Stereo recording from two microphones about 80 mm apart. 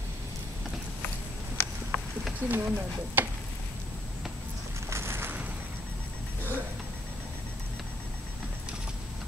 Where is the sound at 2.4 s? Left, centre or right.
Right.